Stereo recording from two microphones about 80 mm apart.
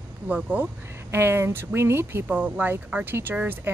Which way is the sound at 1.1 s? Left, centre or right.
Right.